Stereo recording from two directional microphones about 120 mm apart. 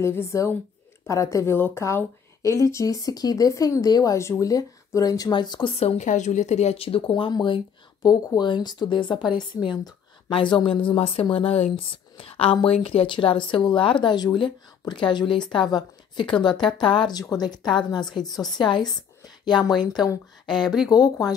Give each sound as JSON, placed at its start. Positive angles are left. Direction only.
{"t": 0.0, "sound": "speech", "side_deg": 20}
{"t": 5.8, "sound": "a woman's voice", "side_deg": 70}
{"t": 20.4, "sound": "speech", "side_deg": 5}
{"t": 20.9, "sound": "a woman's voice", "side_deg": 30}